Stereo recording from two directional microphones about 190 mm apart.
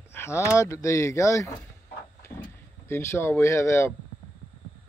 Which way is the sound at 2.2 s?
15° left (ahead or behind).